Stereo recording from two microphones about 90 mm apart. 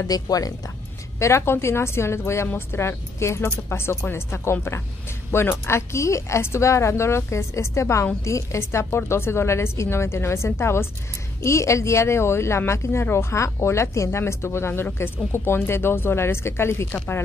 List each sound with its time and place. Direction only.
0.0 s speech: 40° left (ahead or behind)
1.2 s a woman's voice: 30° left (ahead or behind)
16.9 s speech: 20° left (ahead or behind)